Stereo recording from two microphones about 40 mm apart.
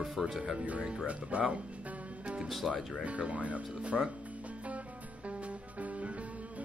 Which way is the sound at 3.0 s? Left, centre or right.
Right.